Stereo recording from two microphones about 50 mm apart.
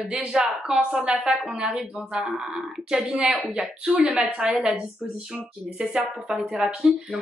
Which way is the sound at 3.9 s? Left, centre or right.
Right.